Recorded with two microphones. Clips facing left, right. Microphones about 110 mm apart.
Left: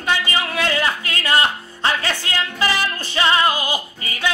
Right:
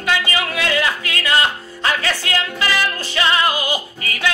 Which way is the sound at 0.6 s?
30° left (ahead or behind).